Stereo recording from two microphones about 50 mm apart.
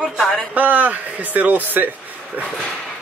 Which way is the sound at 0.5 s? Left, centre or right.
Right.